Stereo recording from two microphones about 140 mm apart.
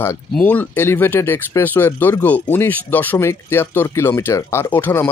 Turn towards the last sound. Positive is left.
turn(degrees=15)  # may be behind; listen again after turning